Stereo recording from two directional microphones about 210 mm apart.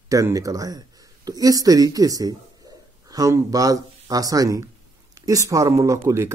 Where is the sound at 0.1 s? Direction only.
15° right (ahead or behind).